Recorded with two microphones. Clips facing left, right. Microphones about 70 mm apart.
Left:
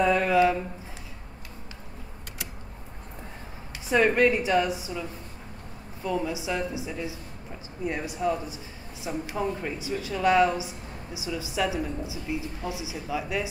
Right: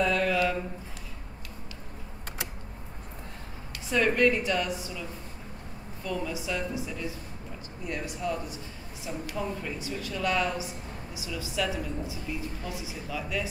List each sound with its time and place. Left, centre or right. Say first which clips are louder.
0.0 s a sound: left 5 dB; centre
3.9 s a woman's voice: left 3 dB; centre
6.0 s a woman's voice: left 4 dB; centre